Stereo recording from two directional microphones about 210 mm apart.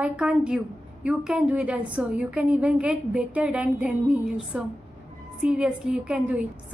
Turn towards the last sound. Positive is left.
turn(degrees=-5)  # may be behind; listen again after turning